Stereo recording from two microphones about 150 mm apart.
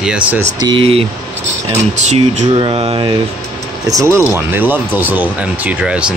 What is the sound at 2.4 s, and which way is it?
Mantra, 35° right (ahead or behind).